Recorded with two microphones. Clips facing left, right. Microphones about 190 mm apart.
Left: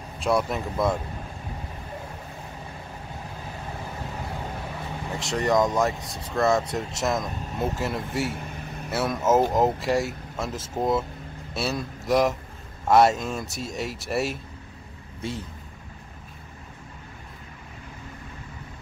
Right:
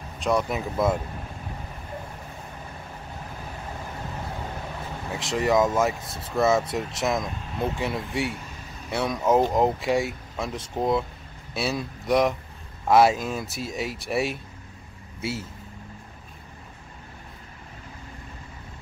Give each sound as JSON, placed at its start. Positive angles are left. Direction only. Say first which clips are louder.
{"t": 0.2, "sound": "speech", "louder": "even", "side_deg": 5}
{"t": 5.1, "sound": "speech", "louder": "right 1 dB", "side_deg": 0}
{"t": 8.4, "sound": "vehicle", "louder": "left 5 dB", "side_deg": 60}
{"t": 8.9, "sound": "a man's voice", "louder": "even", "side_deg": 5}